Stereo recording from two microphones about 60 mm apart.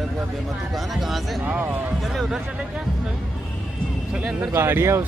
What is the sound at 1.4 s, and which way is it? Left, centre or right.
Speech, right.